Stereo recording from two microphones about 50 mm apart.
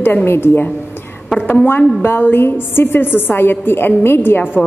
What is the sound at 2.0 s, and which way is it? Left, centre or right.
A woman's voice, left.